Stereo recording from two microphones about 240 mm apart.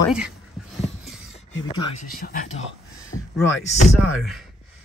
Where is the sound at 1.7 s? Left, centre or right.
Left.